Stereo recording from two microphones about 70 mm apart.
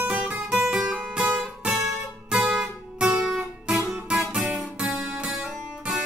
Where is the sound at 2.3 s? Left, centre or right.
Centre.